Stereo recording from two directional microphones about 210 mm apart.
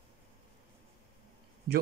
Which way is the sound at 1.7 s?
50° right (ahead or behind).